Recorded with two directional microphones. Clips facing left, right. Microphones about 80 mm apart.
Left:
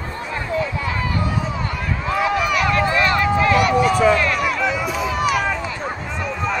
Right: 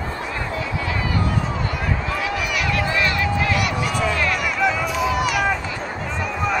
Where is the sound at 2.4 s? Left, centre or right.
Left.